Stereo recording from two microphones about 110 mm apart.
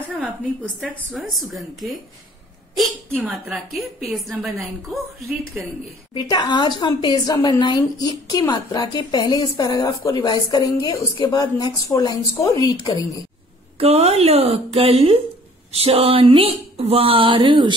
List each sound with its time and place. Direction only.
1.1 s a woman's voice: centre (ahead or behind)
3.2 s speech: 15° right (ahead or behind)
3.7 s a woman's voice: centre (ahead or behind)
6.1 s a woman's voice: 40° left (ahead or behind)
13.7 s speech: 70° right (ahead or behind); by 17.7 s 50° right (ahead or behind)